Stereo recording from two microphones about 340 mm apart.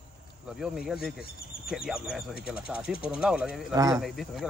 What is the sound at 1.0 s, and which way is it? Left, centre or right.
Speech, left.